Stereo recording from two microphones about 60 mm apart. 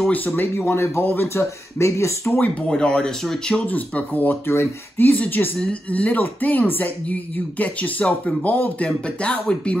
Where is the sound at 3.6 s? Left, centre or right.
Left.